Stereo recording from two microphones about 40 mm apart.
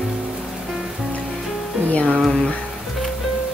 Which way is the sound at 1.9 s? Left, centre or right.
Left.